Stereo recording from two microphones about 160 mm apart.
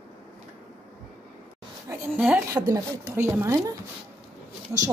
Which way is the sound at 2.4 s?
20° right (ahead or behind).